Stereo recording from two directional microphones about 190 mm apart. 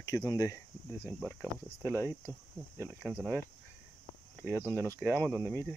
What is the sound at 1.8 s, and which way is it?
Speech, 15° right (ahead or behind).